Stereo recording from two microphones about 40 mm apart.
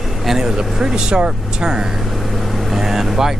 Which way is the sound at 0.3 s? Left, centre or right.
Centre.